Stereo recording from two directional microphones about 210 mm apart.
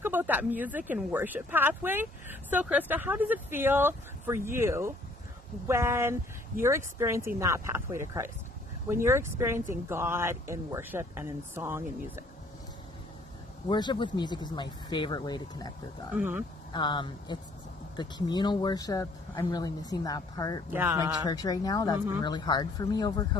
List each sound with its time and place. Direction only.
0.0 s speech: 10° right (ahead or behind)
13.7 s speech: 20° left (ahead or behind)
16.2 s speech: 10° right (ahead or behind)
16.7 s speech: 20° left (ahead or behind)
20.7 s speech: 10° right (ahead or behind)
21.2 s speech: 20° left (ahead or behind)